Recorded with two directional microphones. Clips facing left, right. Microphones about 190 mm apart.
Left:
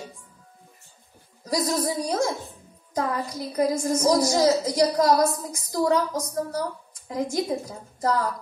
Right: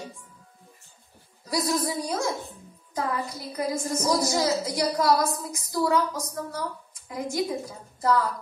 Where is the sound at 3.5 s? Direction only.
40° left (ahead or behind).